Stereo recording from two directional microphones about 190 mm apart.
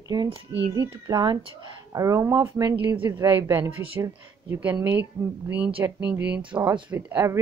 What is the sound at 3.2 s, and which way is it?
Speech, 10° right (ahead or behind).